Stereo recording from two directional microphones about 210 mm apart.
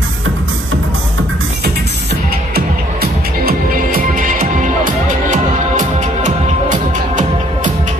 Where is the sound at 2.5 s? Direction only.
45° right (ahead or behind).